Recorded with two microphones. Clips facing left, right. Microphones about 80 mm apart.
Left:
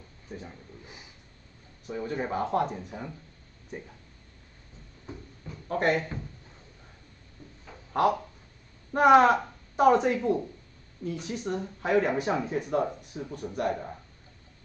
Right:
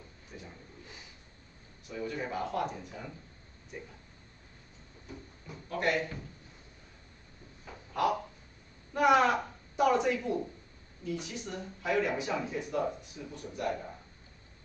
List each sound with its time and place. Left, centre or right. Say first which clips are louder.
0.3 s speech: left 8 dB; left
1.9 s speech: left 5 dB; left
5.7 s speech: left 5 dB; left
8.9 s a woman's voice: left 6 dB; left